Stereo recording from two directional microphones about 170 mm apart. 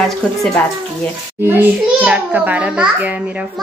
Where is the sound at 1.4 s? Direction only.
10° right (ahead or behind).